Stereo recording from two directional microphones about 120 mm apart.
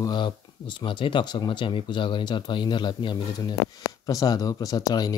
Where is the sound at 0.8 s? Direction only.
45° left (ahead or behind).